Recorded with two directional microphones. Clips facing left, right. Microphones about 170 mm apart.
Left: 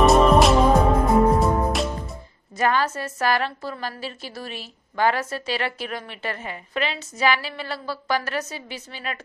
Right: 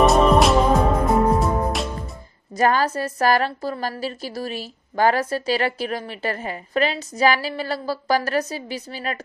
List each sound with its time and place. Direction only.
0.0 s music: centre (ahead or behind)
2.5 s a woman's voice: 35° right (ahead or behind)